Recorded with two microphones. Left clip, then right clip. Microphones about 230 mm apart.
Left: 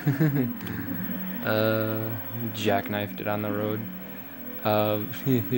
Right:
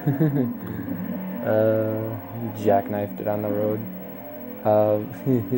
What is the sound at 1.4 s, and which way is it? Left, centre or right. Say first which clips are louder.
Speech: right 5 dB; left.